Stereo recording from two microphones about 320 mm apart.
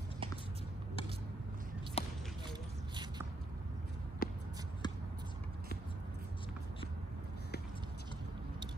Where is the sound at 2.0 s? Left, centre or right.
Centre.